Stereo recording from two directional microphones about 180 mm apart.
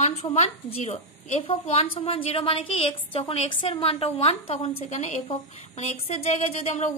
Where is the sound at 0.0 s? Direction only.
35° left (ahead or behind).